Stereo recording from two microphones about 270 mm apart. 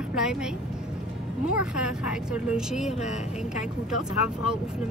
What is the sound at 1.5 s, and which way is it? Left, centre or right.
Speech, centre.